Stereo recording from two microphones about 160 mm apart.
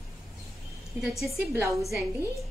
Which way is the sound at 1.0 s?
Centre (ahead or behind).